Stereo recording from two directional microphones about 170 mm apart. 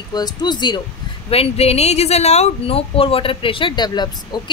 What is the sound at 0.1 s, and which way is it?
A woman's voice, 25° left (ahead or behind).